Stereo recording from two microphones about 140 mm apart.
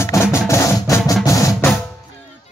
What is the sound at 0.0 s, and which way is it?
Music, 20° left (ahead or behind).